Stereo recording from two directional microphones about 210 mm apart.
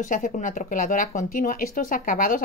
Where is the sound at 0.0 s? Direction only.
40° left (ahead or behind).